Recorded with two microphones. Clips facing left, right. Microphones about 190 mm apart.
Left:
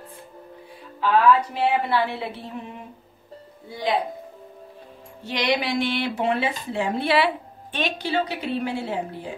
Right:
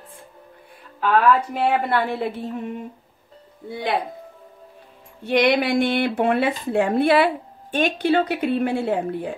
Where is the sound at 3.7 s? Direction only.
55° right (ahead or behind).